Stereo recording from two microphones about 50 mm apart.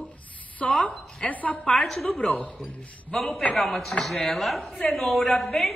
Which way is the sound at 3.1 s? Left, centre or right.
Centre.